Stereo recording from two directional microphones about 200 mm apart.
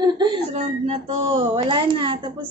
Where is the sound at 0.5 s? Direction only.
35° right (ahead or behind).